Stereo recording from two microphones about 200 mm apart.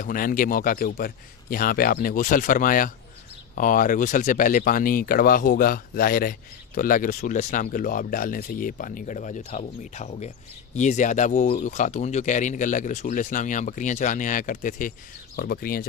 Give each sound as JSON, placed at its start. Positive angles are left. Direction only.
{"t": 0.0, "sound": "speech", "side_deg": 45}